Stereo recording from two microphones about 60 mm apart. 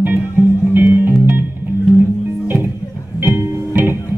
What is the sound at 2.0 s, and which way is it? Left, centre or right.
Music, right.